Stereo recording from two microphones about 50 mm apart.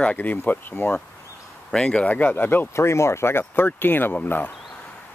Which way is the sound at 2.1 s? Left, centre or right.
Left.